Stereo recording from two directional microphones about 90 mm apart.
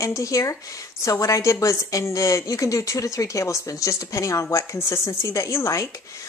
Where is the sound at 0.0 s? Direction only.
35° left (ahead or behind).